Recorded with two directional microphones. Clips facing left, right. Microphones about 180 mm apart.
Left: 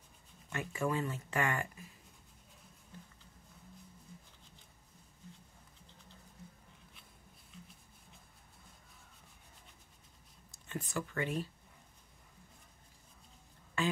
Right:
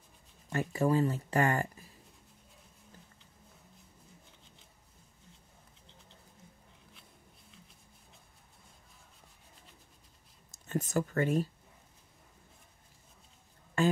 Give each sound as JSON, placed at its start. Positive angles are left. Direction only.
{"t": 0.5, "sound": "speech", "side_deg": -40}
{"t": 10.5, "sound": "speech", "side_deg": -40}
{"t": 13.8, "sound": "a sound", "side_deg": -45}